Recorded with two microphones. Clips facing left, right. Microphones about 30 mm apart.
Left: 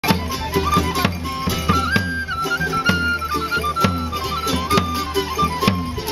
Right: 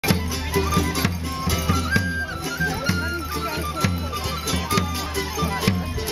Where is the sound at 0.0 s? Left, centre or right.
Centre.